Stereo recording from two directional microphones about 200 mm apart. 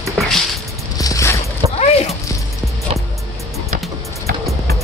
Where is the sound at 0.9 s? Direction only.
15° left (ahead or behind).